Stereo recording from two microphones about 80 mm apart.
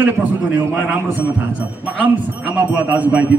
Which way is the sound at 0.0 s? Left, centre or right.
Right.